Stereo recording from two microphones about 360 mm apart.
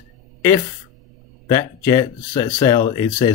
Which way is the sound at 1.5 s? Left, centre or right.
Centre.